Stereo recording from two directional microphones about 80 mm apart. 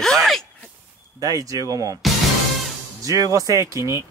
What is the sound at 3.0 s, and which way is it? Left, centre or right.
Speech, right.